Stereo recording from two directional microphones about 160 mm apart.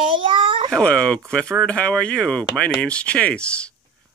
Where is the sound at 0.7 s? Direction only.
5° left (ahead or behind).